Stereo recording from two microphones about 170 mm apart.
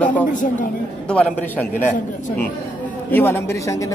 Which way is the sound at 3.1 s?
15° left (ahead or behind).